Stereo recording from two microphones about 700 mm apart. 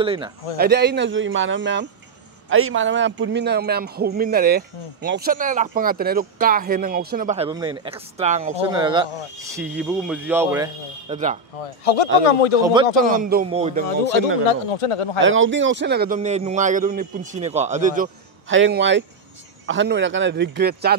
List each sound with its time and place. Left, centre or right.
0.0 s a man's voice: centre
11.6 s speech: left
13.0 s a man's voice: centre
14.4 s speech: left
15.1 s a man's voice: centre